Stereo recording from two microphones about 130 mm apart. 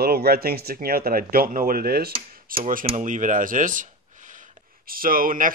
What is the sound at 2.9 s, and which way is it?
Speech, 75° right (ahead or behind).